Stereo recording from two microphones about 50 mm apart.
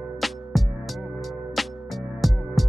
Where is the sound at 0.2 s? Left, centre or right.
Centre.